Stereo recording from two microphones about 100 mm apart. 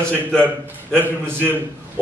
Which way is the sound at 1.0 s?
20° right (ahead or behind).